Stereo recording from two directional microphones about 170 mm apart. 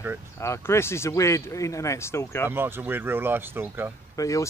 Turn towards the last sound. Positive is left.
turn(degrees=20)  # may be behind; listen again after turning